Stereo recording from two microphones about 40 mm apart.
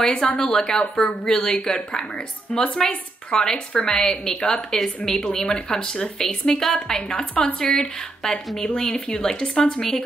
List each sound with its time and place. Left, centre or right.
0.0 s a woman's voice: centre
7.3 s speech: left
7.7 s a woman's voice: centre